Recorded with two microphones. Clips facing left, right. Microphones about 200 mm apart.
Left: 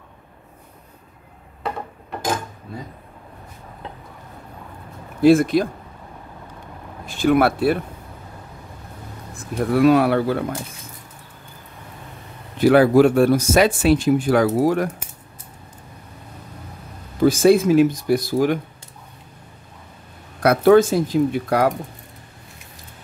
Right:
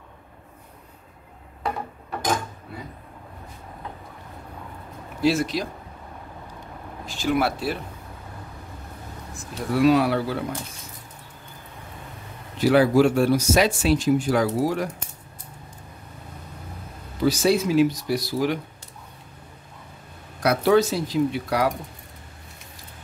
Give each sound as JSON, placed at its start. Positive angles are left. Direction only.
{"t": 5.2, "sound": "speech", "side_deg": 55}
{"t": 7.1, "sound": "speech", "side_deg": 55}
{"t": 9.3, "sound": "speech", "side_deg": 55}
{"t": 12.5, "sound": "speech", "side_deg": 55}
{"t": 17.2, "sound": "speech", "side_deg": 50}
{"t": 20.4, "sound": "speech", "side_deg": 50}